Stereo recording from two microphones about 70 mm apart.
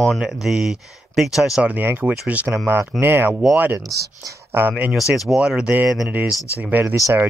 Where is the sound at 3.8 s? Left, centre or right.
Right.